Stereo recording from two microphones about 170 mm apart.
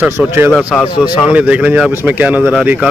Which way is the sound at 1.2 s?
10° right (ahead or behind).